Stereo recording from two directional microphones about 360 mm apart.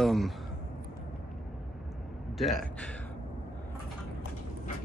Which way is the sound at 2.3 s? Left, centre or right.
Centre.